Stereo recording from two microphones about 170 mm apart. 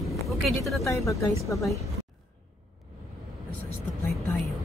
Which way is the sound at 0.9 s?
20° left (ahead or behind).